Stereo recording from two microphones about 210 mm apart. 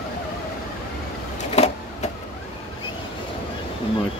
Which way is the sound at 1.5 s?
30° left (ahead or behind).